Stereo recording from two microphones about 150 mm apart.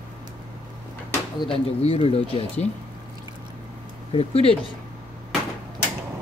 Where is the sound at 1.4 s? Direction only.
40° left (ahead or behind).